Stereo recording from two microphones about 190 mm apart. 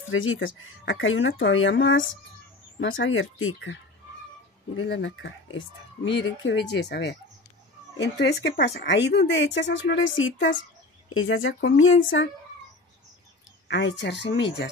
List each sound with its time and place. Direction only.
0.1 s speech: 90° left
4.7 s speech: 75° left (ahead or behind)
6.1 s speech: 70° left (ahead or behind); by 12.3 s 90° left
13.7 s speech: 70° left (ahead or behind)